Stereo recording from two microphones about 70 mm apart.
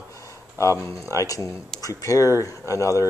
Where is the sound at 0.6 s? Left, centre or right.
Left.